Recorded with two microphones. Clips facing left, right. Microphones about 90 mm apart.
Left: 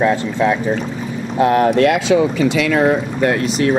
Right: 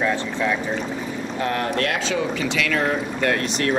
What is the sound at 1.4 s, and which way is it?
Speech, 20° left (ahead or behind).